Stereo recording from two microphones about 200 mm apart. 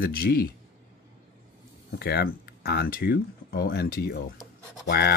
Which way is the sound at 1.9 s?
50° left (ahead or behind).